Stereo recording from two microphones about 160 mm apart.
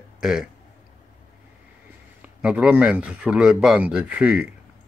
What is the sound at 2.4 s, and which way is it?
Speech, 5° right (ahead or behind).